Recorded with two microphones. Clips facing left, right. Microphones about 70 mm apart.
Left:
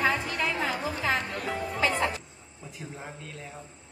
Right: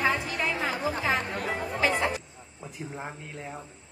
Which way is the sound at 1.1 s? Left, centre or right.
Right.